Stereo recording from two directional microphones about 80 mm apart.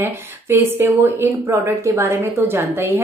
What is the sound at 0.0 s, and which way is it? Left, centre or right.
A woman's voice, right.